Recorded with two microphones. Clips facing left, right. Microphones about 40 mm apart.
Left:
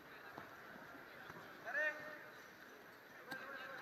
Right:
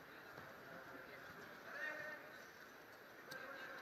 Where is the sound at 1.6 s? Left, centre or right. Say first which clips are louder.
Left 9 dB; left.